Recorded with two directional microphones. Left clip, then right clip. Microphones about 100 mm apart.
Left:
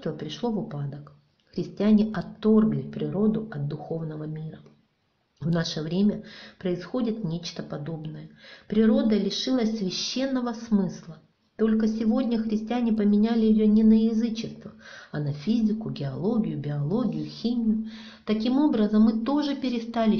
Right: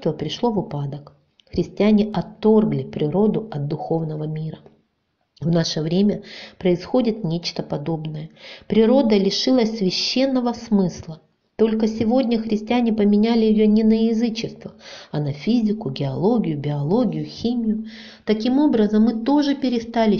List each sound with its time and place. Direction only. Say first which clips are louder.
0.0 s a woman's voice: right 9 dB; 35° right (ahead or behind)